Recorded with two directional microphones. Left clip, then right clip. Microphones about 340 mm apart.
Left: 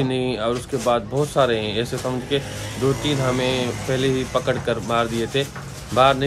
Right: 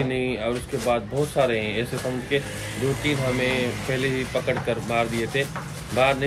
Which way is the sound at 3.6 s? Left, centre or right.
Left.